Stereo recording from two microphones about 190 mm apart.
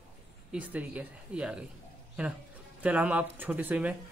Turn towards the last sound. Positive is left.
turn(degrees=-10)  # may be behind; listen again after turning